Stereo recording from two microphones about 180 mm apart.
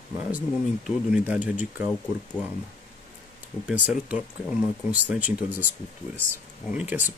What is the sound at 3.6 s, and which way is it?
Speech, 5° right (ahead or behind).